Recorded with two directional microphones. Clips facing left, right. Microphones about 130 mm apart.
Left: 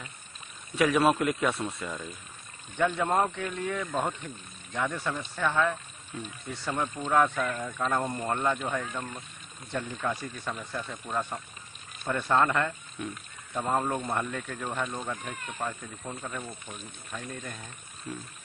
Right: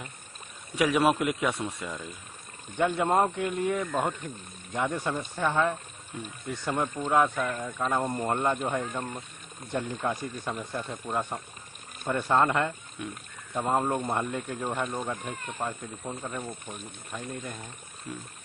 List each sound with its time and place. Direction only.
0.7 s speech: 15° right (ahead or behind)